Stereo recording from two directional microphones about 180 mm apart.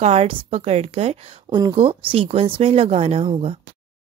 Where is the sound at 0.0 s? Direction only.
35° right (ahead or behind).